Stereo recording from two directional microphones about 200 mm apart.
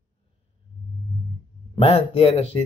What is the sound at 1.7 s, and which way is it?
Speech, 30° left (ahead or behind).